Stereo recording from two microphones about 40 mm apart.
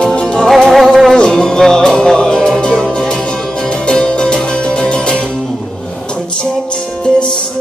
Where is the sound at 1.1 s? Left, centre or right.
Centre.